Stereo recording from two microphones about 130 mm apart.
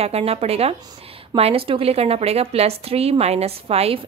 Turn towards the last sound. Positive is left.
turn(degrees=-50)  # may be behind; listen again after turning